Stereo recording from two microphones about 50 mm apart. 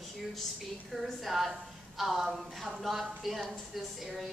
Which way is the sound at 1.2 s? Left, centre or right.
Centre.